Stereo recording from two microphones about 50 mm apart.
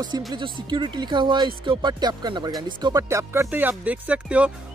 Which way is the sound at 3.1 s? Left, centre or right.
Right.